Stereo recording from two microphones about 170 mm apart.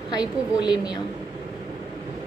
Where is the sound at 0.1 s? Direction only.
25° left (ahead or behind).